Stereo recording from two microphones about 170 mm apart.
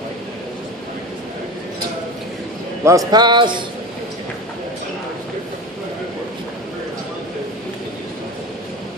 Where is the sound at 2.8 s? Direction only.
20° right (ahead or behind).